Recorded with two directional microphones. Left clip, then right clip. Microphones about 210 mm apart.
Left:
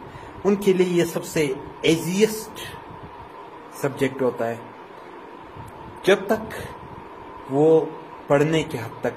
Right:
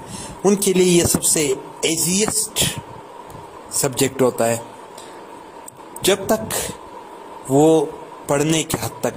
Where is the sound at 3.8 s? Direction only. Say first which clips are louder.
Right 4 dB; 45° right (ahead or behind).